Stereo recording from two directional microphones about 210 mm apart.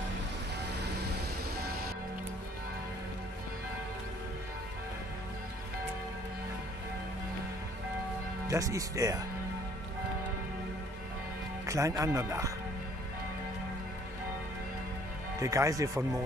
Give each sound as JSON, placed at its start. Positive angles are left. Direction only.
{"t": 8.5, "sound": "speech", "side_deg": -15}
{"t": 11.6, "sound": "speech", "side_deg": -15}
{"t": 15.4, "sound": "speech", "side_deg": -15}